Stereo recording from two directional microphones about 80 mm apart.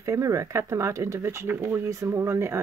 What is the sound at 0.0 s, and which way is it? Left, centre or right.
Speech, right.